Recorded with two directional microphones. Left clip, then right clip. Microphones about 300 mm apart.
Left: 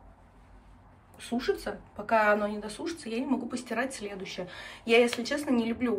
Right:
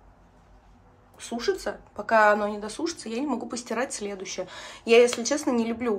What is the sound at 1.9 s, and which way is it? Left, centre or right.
Speech, centre.